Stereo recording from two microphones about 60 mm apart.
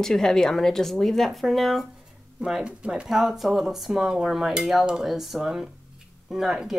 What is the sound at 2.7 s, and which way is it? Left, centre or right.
Dishes, centre.